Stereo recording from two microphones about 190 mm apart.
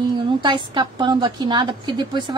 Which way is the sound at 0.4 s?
25° right (ahead or behind).